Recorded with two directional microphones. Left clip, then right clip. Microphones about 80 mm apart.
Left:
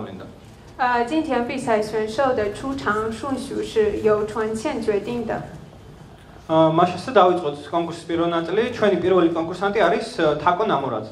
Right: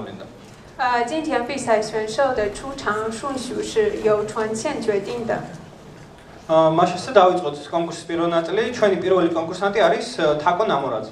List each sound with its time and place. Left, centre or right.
0.7 s speech: left
6.4 s speech: left